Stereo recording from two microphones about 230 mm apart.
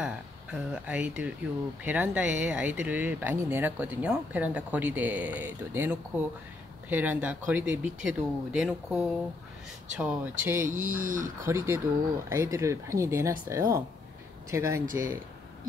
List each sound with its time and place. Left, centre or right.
0.0 s speech: centre
11.0 s speech: right
11.4 s speech: centre